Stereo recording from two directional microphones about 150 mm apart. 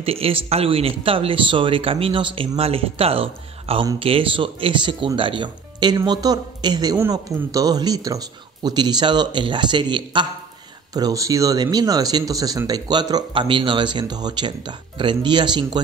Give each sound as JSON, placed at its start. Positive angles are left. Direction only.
{"t": 0.0, "sound": "speech", "side_deg": -40}